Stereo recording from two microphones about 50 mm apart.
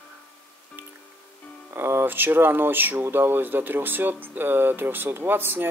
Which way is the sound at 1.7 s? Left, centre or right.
Right.